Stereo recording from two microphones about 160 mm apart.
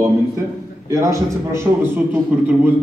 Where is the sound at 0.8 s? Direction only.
20° right (ahead or behind).